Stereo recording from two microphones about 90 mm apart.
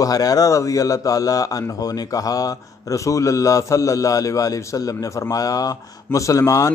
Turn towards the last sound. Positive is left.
turn(degrees=35)  # may be behind; listen again after turning